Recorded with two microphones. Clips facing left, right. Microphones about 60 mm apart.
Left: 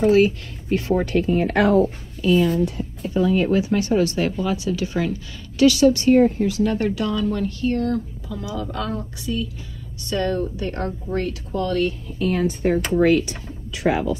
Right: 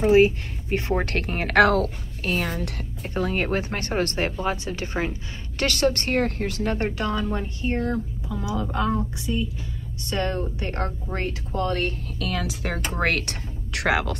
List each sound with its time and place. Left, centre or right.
0.0 s a woman's voice: right
1.0 s speech: right
2.2 s speech: right
3.0 s speech: right
5.7 s a woman's voice: right
12.2 s speech: right